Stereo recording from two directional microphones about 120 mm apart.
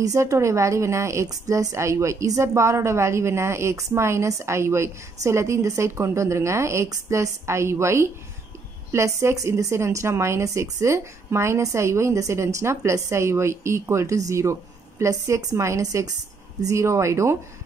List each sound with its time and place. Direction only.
0.0 s a woman's voice: 25° right (ahead or behind)